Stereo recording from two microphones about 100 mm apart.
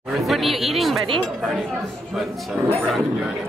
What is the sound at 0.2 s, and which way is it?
Speech, centre (ahead or behind).